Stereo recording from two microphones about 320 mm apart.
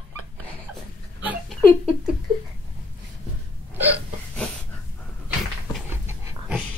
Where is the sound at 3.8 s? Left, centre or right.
Centre.